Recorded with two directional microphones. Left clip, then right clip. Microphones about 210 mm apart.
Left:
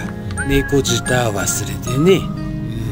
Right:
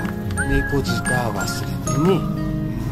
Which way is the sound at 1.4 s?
Centre (ahead or behind).